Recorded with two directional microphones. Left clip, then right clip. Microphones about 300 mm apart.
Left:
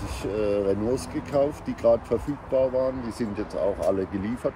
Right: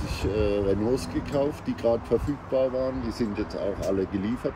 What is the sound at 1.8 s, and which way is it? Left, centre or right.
Speech, centre.